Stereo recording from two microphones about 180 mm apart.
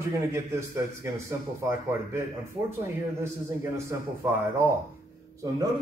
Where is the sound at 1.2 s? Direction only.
15° right (ahead or behind).